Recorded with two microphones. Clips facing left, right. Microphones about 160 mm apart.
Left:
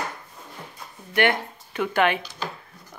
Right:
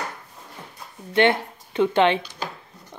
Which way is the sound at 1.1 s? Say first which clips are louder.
Right 3 dB; 25° right (ahead or behind).